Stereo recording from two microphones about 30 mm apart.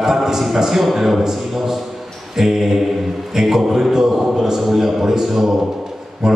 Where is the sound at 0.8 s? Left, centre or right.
Centre.